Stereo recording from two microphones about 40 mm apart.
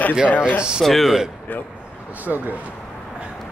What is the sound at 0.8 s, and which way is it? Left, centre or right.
Speech, centre.